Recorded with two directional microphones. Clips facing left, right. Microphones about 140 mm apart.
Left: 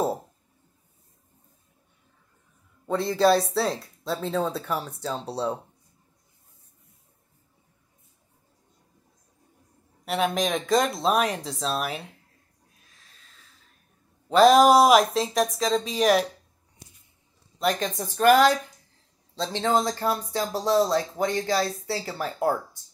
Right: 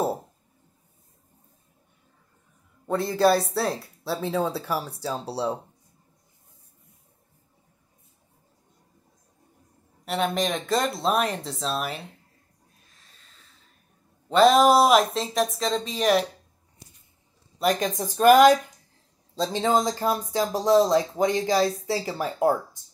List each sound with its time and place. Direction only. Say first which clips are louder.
2.9 s speech: even; centre (ahead or behind)
10.0 s speech: even; centre (ahead or behind)
13.0 s a sound: left 1 dB; centre (ahead or behind)
14.3 s speech: left 1 dB; centre (ahead or behind)
17.6 s speech: right 2 dB; 5° right (ahead or behind)
20.7 s speech: right 3 dB; centre (ahead or behind)
21.5 s speech: right 3 dB; 15° right (ahead or behind)